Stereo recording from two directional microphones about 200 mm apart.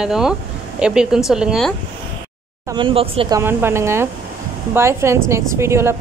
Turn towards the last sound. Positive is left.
turn(degrees=-15)  # may be behind; listen again after turning